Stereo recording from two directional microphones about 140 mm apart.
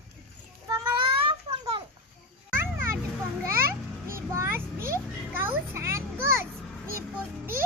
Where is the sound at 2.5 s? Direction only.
15° right (ahead or behind).